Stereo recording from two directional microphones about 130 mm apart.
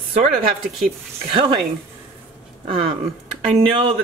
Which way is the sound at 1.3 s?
35° right (ahead or behind).